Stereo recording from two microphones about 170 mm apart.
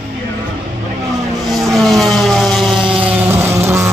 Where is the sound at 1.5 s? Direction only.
Centre (ahead or behind); by 3.9 s 15° right (ahead or behind).